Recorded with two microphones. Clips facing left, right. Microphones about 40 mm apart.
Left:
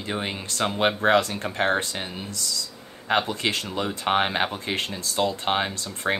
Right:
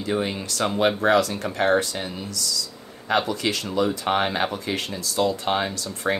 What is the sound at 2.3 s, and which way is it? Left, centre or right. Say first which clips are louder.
Speech: right 2 dB; left.